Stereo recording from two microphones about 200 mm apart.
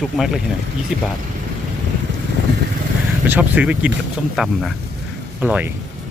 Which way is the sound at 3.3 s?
10° right (ahead or behind).